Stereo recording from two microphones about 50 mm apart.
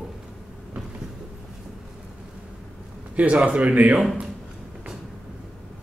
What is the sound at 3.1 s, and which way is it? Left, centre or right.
Speech, right.